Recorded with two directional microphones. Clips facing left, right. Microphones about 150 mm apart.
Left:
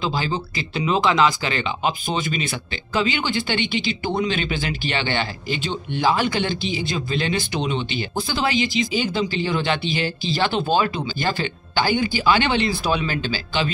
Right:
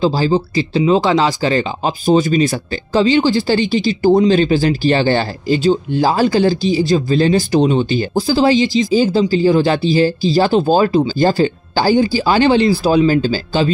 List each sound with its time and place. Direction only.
0.0 s speech: 35° right (ahead or behind)